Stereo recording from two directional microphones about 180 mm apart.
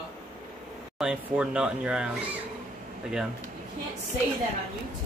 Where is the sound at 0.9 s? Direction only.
5° right (ahead or behind).